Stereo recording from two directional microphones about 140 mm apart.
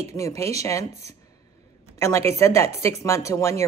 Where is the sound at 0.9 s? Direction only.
50° right (ahead or behind).